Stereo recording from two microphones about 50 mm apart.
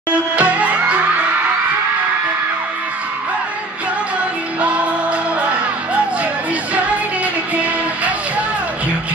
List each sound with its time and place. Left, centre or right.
0.1 s music: right
4.6 s music: right
7.5 s music: right